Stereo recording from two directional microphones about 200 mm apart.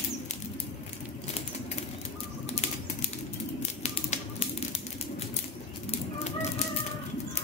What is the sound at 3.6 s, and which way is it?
Typewriter, 35° left (ahead or behind).